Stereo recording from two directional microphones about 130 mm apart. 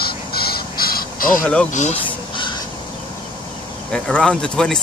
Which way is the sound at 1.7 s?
65° left (ahead or behind).